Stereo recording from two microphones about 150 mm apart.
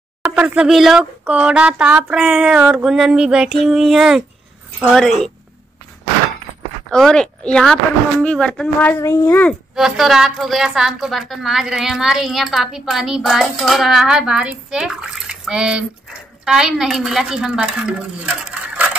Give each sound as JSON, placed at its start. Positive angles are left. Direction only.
{"t": 0.2, "sound": "a woman's voice", "side_deg": -5}
{"t": 6.9, "sound": "speech", "side_deg": 5}
{"t": 9.8, "sound": "a woman's voice", "side_deg": -5}